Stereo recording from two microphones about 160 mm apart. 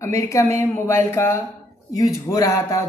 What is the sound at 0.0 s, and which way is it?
A woman's voice, 20° left (ahead or behind).